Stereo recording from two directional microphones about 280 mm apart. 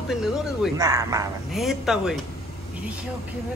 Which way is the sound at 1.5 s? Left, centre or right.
Centre.